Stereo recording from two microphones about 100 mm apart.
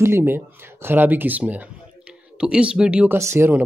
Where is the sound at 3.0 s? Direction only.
25° right (ahead or behind).